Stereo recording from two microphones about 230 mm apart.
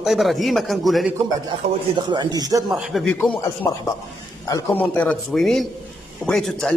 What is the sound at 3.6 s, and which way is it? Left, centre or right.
A man's voice, centre.